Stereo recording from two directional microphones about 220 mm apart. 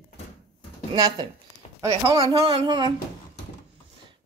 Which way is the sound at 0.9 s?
20° right (ahead or behind).